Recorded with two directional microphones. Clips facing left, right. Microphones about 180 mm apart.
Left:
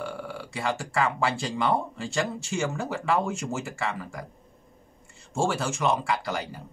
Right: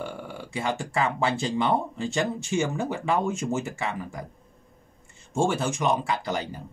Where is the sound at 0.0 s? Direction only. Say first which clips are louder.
Left 1 dB; 20° right (ahead or behind).